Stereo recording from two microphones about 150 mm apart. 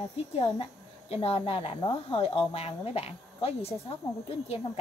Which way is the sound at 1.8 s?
25° left (ahead or behind).